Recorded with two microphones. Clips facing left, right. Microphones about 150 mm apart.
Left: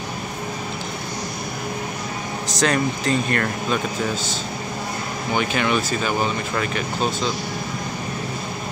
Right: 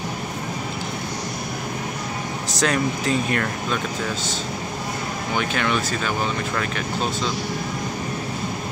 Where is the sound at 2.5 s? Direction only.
5° right (ahead or behind).